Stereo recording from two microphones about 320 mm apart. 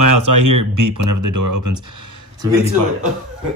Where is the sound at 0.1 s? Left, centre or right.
Right.